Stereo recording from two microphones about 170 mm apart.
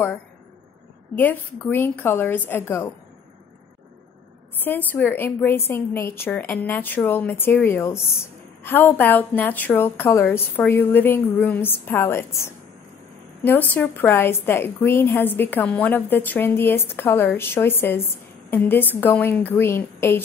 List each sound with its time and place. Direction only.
1.1 s a woman's voice: 10° left (ahead or behind)
4.6 s a woman's voice: 10° left (ahead or behind)